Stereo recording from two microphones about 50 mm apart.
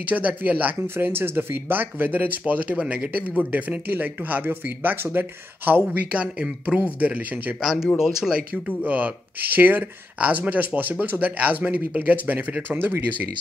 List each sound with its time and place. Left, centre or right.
0.0 s speech: right
0.8 s speech: right
5.7 s speech: right
6.1 s speech: right
6.8 s speech: right
8.0 s speech: centre
8.6 s speech: right